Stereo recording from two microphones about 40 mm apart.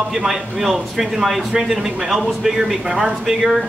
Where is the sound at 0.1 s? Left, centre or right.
Centre.